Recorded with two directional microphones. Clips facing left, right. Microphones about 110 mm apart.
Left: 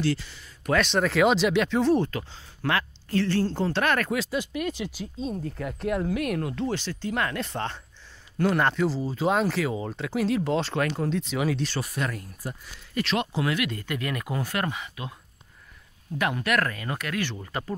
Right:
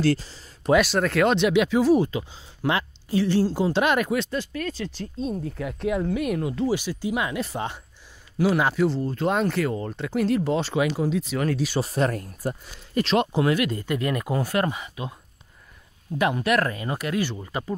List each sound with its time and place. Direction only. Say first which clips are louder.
0.0 s speech: right 4 dB; 40° right (ahead or behind)
0.7 s speech: right 1 dB; 5° right (ahead or behind)
2.0 s speech: right 3 dB; 15° right (ahead or behind)
4.1 s speech: right 2 dB; centre (ahead or behind)
4.4 s speech: even; 15° left (ahead or behind)
5.2 s speech: right 2 dB; centre (ahead or behind)
11.8 s speech: right 7 dB; 35° right (ahead or behind)
16.2 s speech: right 3 dB; 20° right (ahead or behind)
17.3 s speech: right 3 dB; 10° right (ahead or behind)